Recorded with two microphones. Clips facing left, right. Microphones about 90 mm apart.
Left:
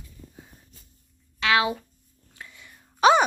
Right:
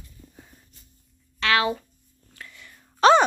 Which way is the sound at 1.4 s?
15° left (ahead or behind).